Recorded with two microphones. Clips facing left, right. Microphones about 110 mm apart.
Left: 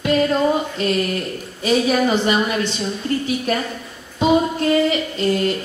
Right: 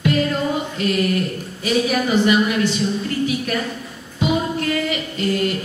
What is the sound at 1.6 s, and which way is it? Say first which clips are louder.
A woman's voice: left 3 dB; 30° left (ahead or behind).